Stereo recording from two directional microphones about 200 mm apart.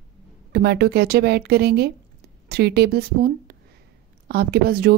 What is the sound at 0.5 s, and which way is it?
A woman's voice, 55° right (ahead or behind).